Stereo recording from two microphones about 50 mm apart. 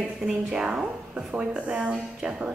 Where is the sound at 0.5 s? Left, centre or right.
Centre.